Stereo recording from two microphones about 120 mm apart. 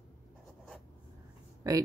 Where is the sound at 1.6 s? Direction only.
30° right (ahead or behind).